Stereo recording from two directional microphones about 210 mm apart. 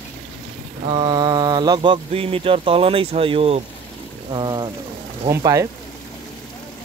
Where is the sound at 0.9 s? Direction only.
20° right (ahead or behind).